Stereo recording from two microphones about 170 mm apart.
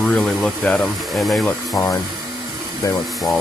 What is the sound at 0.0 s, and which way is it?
Speech, 5° left (ahead or behind).